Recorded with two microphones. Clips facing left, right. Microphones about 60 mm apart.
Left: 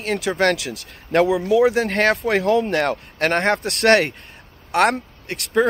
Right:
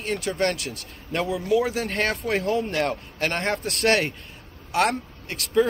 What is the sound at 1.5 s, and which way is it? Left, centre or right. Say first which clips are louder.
Speech: left 6 dB; left.